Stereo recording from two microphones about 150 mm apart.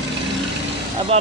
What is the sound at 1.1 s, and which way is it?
Speech, 45° right (ahead or behind).